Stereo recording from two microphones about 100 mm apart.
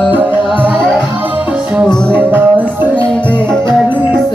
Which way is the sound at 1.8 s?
10° left (ahead or behind).